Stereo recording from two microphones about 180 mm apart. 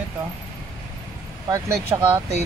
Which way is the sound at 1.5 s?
15° right (ahead or behind).